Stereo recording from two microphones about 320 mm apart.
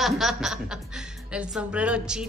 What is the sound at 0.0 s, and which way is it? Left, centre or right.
A woman's voice, centre.